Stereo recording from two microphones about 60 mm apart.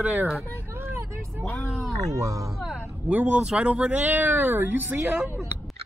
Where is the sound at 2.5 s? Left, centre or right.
Centre.